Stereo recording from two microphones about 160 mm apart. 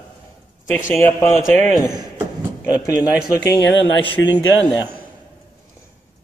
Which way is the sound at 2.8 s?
20° left (ahead or behind).